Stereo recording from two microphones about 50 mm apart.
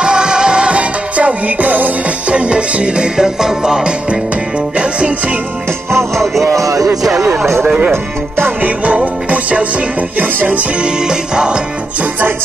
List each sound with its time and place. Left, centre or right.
0.0 s music: centre
4.7 s music: right
6.4 s music: right
7.0 s music: centre
7.6 s music: right
7.9 s speech: right
8.6 s music: right
10.8 s music: centre